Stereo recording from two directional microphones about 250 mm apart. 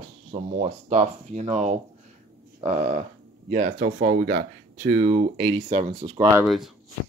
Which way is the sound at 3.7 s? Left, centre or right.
Right.